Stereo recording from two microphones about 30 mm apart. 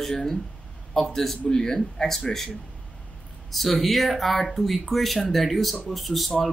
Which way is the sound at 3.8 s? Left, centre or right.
Centre.